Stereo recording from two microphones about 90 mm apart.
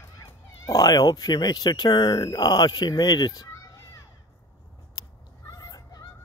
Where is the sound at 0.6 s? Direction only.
45° left (ahead or behind).